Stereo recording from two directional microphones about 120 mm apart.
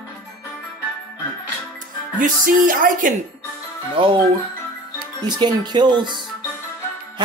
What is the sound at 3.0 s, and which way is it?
Speech, 90° right.